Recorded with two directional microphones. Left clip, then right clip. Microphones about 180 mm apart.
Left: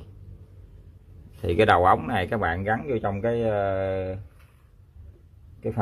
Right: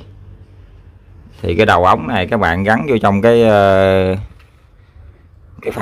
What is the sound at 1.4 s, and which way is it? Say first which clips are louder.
Speech: right 8 dB; 15° right (ahead or behind).